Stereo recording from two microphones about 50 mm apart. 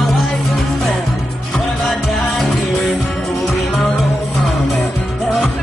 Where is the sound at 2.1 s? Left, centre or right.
Centre.